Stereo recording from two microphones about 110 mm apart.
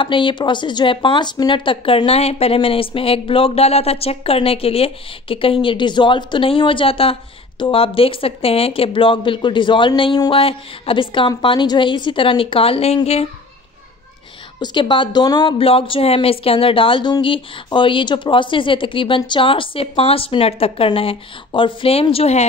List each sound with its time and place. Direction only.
0.0 s speech: 50° left (ahead or behind)
10.3 s speech: 55° left (ahead or behind)
14.6 s speech: 45° left (ahead or behind)
15.5 s speech: 55° left (ahead or behind)